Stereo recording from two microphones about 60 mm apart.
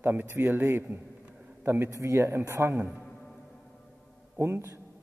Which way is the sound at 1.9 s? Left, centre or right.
Right.